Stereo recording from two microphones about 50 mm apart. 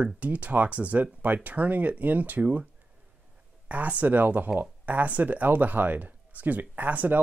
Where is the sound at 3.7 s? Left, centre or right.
Right.